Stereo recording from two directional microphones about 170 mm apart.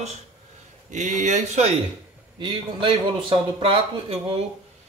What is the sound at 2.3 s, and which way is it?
Speech, 30° right (ahead or behind).